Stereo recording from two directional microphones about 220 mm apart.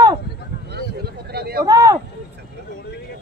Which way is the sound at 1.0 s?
45° right (ahead or behind).